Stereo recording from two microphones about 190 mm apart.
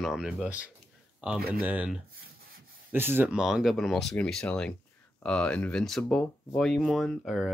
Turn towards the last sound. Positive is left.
turn(degrees=0)  # may be behind; listen again after turning